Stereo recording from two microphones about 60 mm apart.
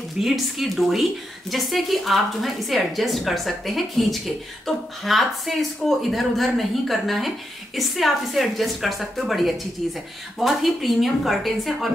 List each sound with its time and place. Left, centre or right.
0.2 s speech: centre